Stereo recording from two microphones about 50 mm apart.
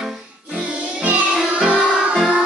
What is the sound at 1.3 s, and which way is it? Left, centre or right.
Music, centre.